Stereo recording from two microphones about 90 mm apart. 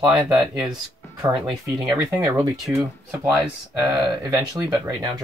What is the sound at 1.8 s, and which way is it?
Speech, 35° right (ahead or behind).